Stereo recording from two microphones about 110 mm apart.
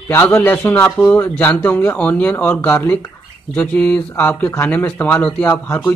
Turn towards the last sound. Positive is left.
turn(degrees=15)  # may be behind; listen again after turning